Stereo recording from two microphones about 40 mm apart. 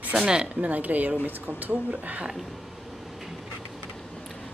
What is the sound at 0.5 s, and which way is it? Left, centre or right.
Speech, right.